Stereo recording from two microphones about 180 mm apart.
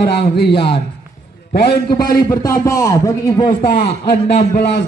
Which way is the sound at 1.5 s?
60° left (ahead or behind).